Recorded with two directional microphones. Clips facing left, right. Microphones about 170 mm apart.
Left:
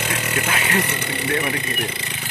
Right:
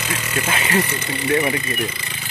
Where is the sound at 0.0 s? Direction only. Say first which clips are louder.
Even; 60° left (ahead or behind).